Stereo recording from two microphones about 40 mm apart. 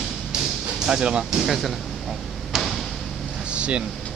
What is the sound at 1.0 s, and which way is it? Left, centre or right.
Speech, right.